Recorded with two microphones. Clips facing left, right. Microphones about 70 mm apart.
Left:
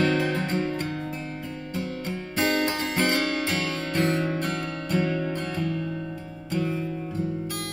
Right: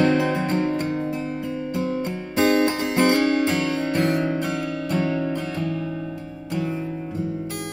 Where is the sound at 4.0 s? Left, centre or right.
Centre.